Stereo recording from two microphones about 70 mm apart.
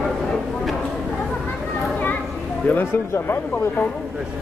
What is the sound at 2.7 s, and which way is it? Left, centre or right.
Speech, left.